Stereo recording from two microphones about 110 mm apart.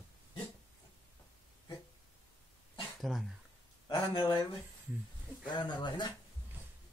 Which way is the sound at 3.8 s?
40° left (ahead or behind).